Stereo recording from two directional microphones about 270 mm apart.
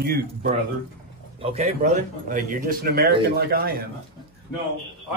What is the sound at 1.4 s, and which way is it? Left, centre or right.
A man's voice, right.